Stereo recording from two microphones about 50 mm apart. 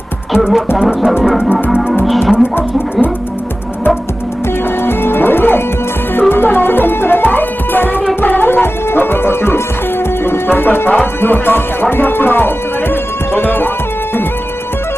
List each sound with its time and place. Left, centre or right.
0.3 s music: centre
4.8 s music: left
11.1 s speech: left